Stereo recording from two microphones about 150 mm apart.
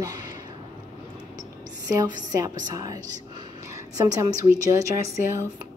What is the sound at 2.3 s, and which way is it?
A woman's voice, 25° right (ahead or behind).